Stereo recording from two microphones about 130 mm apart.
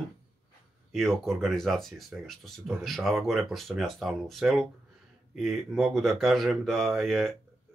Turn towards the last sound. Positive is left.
turn(degrees=0)  # may be behind; listen again after turning